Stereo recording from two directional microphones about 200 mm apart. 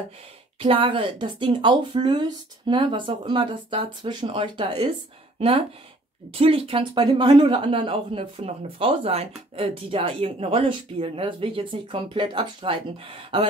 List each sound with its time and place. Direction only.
0.6 s speech: 25° right (ahead or behind)